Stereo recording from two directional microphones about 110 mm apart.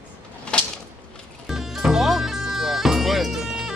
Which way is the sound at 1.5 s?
5° right (ahead or behind).